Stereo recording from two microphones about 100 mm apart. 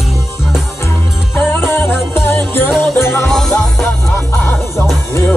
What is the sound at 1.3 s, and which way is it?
Music, 20° left (ahead or behind).